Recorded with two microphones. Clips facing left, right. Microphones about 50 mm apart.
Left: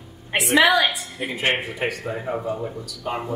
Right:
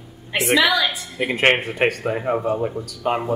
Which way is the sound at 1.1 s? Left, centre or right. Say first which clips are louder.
Right 10 dB; right.